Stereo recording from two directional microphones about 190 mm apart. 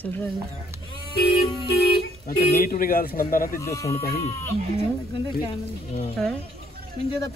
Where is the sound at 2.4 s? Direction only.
50° left (ahead or behind).